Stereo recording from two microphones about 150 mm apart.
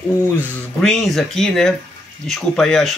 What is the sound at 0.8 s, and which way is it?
Speech, centre (ahead or behind).